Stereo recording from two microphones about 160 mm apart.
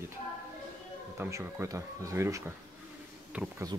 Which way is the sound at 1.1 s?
15° right (ahead or behind).